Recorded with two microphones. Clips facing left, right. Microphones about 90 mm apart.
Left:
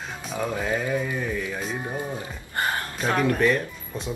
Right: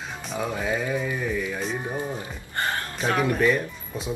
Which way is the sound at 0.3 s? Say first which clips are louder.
Left 1 dB; centre (ahead or behind).